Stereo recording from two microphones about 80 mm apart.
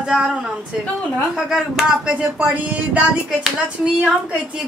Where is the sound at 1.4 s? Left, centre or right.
Centre.